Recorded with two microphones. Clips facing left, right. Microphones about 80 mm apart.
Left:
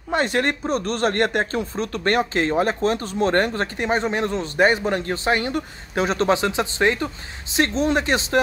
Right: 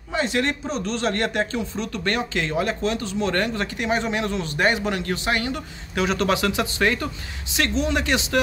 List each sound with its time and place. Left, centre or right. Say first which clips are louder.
0.1 s speech: left 2 dB; left
7.5 s speech: left 3 dB; left